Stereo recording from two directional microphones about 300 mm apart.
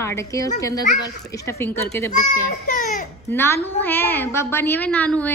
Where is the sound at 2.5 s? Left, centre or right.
Left.